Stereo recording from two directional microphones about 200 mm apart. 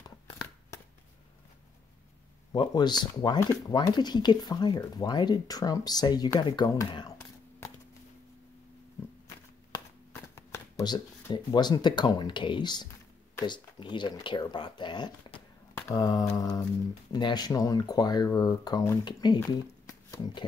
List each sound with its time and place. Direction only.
2.5 s speech: 20° left (ahead or behind)
10.3 s speech: 15° left (ahead or behind)
15.7 s mantra: 15° left (ahead or behind)
17.1 s speech: 20° left (ahead or behind)